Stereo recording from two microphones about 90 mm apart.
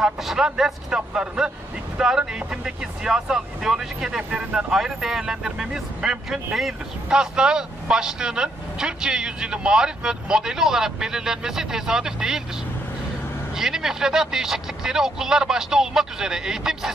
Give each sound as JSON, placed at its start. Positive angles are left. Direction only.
{"t": 0.0, "sound": "speech", "side_deg": -5}
{"t": 13.6, "sound": "speech", "side_deg": -5}